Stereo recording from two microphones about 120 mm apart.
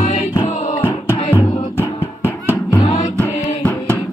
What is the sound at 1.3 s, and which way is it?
Music, 20° left (ahead or behind).